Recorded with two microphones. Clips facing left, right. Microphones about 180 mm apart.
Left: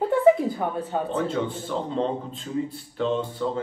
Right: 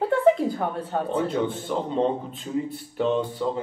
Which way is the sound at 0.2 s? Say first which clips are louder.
Left 3 dB; centre (ahead or behind).